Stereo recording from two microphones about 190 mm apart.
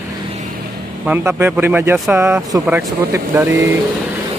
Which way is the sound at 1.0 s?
10° right (ahead or behind).